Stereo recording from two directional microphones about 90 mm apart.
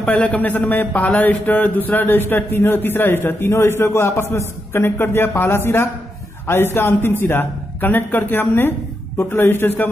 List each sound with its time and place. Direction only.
0.1 s speech: 15° left (ahead or behind)